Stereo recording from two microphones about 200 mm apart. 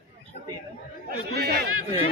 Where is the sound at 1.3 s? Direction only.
50° right (ahead or behind).